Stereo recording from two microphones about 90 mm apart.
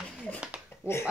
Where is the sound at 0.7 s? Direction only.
25° left (ahead or behind).